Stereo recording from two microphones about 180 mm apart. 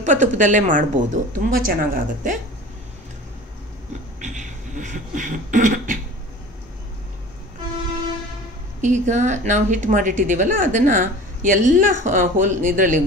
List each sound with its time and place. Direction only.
0.0 s a woman's voice: 45° right (ahead or behind)
4.2 s beatboxing: 45° right (ahead or behind)
8.8 s a woman's voice: 40° right (ahead or behind)